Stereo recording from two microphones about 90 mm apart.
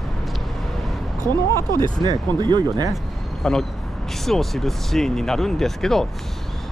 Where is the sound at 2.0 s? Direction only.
55° right (ahead or behind).